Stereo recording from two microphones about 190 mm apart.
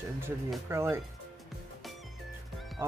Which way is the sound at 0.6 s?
15° right (ahead or behind).